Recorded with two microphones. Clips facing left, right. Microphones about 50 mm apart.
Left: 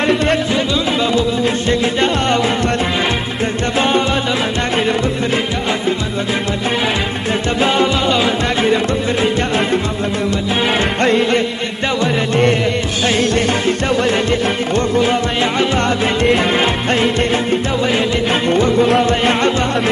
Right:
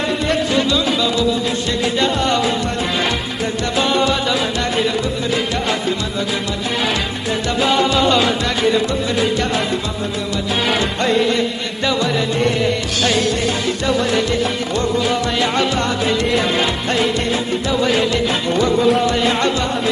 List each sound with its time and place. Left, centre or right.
1.0 s music: left
3.7 s music: left
7.6 s music: left
10.8 s music: left
15.5 s music: left
16.0 s music: left
17.8 s music: left
18.3 s music: left